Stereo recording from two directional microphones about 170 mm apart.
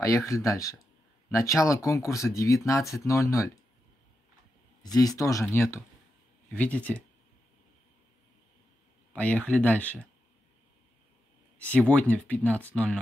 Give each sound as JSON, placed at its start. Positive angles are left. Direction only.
{"t": 0.0, "sound": "speech", "side_deg": 20}
{"t": 4.8, "sound": "speech", "side_deg": 20}
{"t": 9.1, "sound": "speech", "side_deg": 10}
{"t": 11.9, "sound": "speech", "side_deg": 10}